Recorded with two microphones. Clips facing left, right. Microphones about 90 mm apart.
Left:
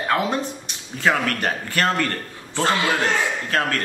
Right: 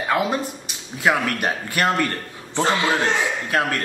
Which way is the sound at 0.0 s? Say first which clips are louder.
Even; 5° right (ahead or behind).